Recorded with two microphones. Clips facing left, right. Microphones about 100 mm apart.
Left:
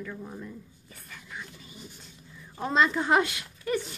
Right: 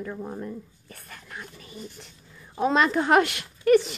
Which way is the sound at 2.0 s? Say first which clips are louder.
Right 2 dB; 75° right (ahead or behind).